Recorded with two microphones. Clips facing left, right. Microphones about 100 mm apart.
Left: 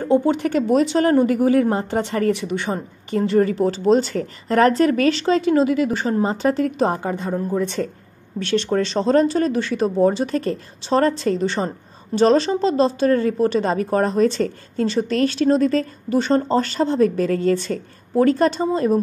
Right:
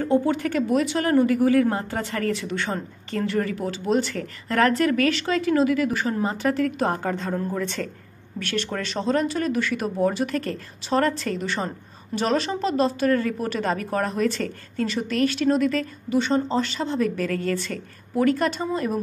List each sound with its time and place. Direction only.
0.0 s speech: 20° left (ahead or behind)